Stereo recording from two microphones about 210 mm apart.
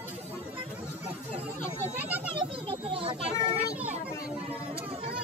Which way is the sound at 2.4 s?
25° right (ahead or behind).